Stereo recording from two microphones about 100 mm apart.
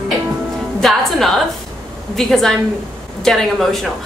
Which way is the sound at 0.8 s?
Centre (ahead or behind).